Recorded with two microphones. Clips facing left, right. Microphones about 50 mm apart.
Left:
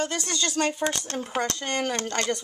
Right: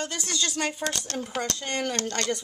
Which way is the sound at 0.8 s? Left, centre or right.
Centre.